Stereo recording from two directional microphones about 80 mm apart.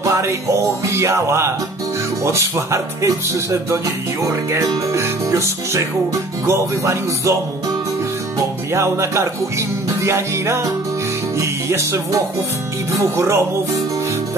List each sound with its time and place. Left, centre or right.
0.0 s speech: right
8.7 s speech: right
11.3 s music: right
12.9 s speech: right